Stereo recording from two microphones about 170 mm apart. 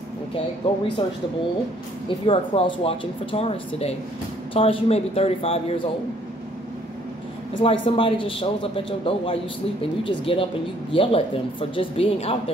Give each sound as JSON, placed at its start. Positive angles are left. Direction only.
{"t": 0.6, "sound": "speech", "side_deg": 30}
{"t": 2.0, "sound": "speech", "side_deg": 30}
{"t": 7.6, "sound": "speech", "side_deg": 30}